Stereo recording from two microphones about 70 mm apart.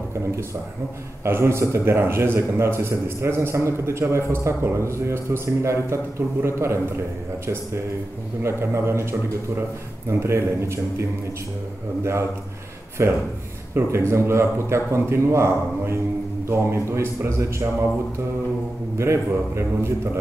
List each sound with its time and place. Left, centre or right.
1.2 s a man's voice: right
8.4 s a man's voice: right
10.0 s a man's voice: right
12.0 s a man's voice: right
18.9 s a man's voice: right